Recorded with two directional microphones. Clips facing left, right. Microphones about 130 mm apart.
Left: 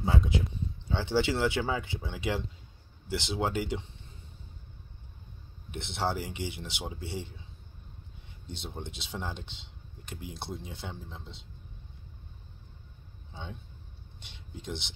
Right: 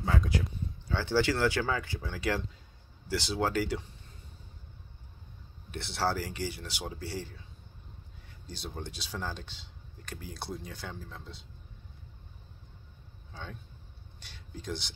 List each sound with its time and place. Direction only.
0.8 s speech: 20° left (ahead or behind)
5.7 s speech: 20° left (ahead or behind)
8.6 s speech: 20° left (ahead or behind)
13.3 s speech: 20° left (ahead or behind)